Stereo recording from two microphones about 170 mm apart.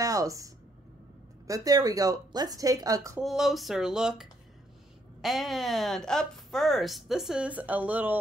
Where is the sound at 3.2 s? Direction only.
Centre (ahead or behind).